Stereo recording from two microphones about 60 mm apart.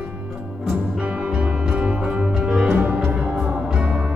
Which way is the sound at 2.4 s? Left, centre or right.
Centre.